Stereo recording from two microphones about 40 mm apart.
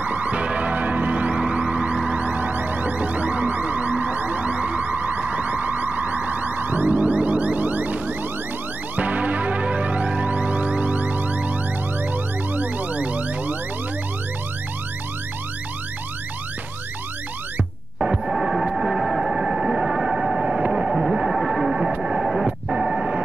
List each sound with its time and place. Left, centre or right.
0.0 s music: right
12.5 s car alarm: right
17.9 s music: right
19.3 s a sound: right
21.4 s effects unit: centre
21.6 s a sound: centre
22.7 s music: right